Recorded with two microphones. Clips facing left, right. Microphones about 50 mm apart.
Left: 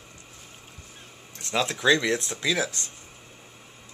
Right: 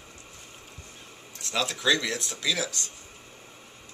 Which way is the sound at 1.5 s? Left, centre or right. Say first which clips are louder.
Left 3 dB; left.